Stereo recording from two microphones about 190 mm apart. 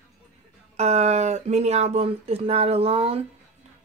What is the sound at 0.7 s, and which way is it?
Speech, 35° right (ahead or behind).